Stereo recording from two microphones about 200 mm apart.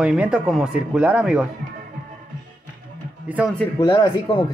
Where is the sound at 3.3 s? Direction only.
5° right (ahead or behind).